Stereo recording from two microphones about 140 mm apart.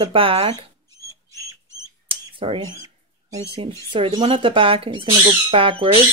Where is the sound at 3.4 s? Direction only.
45° right (ahead or behind).